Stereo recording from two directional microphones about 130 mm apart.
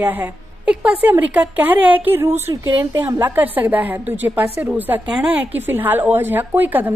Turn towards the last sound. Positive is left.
turn(degrees=-15)  # may be behind; listen again after turning